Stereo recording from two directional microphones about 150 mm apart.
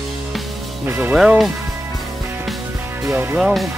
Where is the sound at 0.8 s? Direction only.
15° right (ahead or behind).